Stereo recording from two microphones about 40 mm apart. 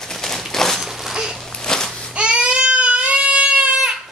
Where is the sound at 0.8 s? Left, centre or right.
Centre.